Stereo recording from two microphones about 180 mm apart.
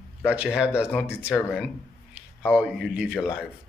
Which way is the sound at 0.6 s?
5° right (ahead or behind).